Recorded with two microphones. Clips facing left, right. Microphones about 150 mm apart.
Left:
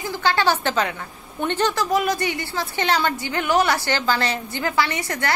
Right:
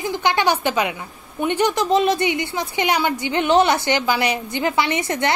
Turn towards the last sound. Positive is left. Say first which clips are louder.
# right 4 dB
turn(degrees=-20)  # may be behind; listen again after turning